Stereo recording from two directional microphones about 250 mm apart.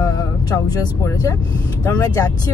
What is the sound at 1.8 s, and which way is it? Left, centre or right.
Speech, centre.